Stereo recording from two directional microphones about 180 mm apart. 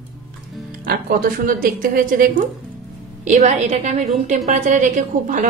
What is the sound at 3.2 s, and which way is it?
A woman's voice, 40° right (ahead or behind).